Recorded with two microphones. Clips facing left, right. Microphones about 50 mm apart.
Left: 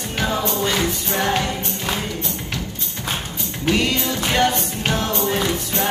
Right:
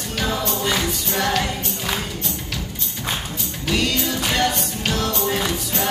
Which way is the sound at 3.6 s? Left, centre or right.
Centre.